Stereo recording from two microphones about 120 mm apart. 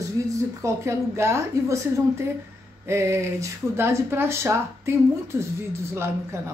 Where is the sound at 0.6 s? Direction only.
25° right (ahead or behind).